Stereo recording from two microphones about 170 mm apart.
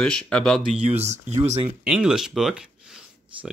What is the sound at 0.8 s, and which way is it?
Speech, 10° right (ahead or behind).